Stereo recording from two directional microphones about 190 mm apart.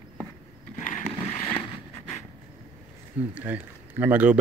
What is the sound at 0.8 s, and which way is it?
Vehicle, 40° left (ahead or behind).